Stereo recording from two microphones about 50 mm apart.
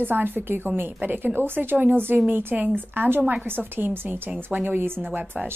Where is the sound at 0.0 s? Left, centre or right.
Right.